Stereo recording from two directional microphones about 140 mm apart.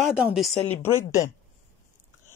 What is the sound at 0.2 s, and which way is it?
Speech, centre (ahead or behind).